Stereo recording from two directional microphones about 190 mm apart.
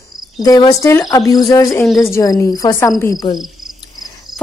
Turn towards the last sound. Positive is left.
turn(degrees=15)  # may be behind; listen again after turning